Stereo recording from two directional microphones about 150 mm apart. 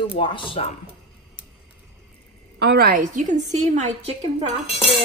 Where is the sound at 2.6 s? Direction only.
90° right; by 4.1 s 50° right (ahead or behind).